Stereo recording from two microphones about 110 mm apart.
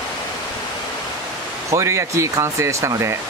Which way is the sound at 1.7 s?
25° right (ahead or behind).